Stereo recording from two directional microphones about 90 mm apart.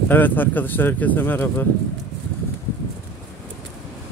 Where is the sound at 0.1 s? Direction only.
20° left (ahead or behind).